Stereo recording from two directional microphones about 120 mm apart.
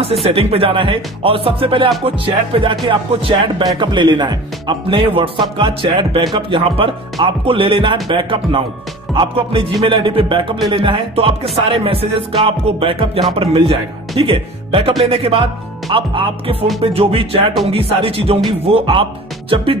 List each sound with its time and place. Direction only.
0.3 s speech: 55° right (ahead or behind)